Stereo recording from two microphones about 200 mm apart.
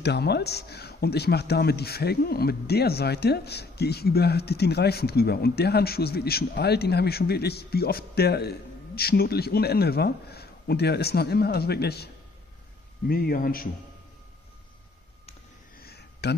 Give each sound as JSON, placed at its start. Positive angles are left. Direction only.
{"t": 0.0, "sound": "a man's voice", "side_deg": 55}
{"t": 13.1, "sound": "a man's voice", "side_deg": 50}
{"t": 15.8, "sound": "a sound", "side_deg": 55}